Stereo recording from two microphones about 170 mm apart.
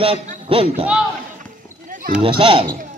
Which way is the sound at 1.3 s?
50° right (ahead or behind).